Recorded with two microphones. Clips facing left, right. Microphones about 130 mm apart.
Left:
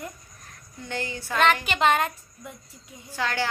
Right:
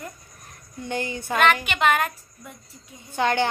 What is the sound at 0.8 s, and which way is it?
Speech, 15° right (ahead or behind).